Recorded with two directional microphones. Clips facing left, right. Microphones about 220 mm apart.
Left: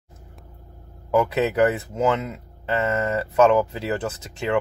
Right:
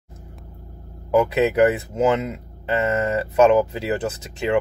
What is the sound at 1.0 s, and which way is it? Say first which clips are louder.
Speech: right 3 dB; 15° right (ahead or behind).